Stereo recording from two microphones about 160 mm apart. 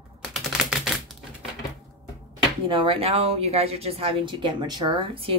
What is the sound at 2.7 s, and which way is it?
A woman's voice, 35° right (ahead or behind).